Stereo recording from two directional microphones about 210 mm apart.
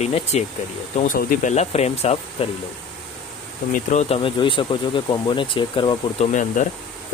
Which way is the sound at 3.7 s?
35° left (ahead or behind).